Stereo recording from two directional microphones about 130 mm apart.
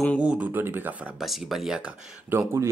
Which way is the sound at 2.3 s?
25° right (ahead or behind).